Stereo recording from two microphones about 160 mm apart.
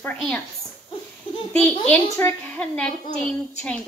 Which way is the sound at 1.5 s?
10° left (ahead or behind).